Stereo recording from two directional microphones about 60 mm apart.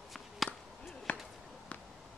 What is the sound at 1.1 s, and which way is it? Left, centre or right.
Basketball bounce, left.